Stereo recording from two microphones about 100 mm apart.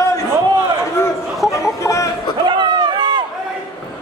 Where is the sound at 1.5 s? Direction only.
30° left (ahead or behind).